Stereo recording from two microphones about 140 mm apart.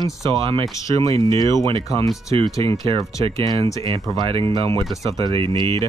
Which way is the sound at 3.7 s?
25° left (ahead or behind).